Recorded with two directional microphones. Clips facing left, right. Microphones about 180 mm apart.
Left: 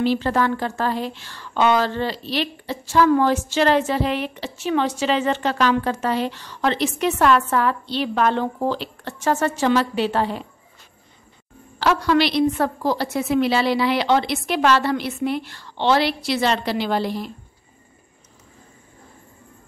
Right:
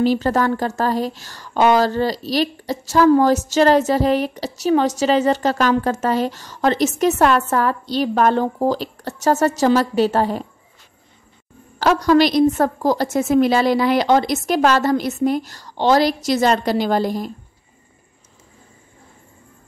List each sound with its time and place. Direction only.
0.0 s a woman's voice: 40° right (ahead or behind)
11.8 s a woman's voice: 40° right (ahead or behind)